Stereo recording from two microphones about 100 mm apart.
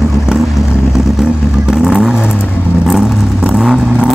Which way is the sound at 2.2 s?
20° left (ahead or behind).